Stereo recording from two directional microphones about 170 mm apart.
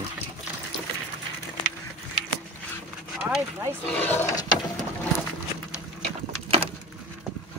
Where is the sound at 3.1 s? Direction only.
5° right (ahead or behind).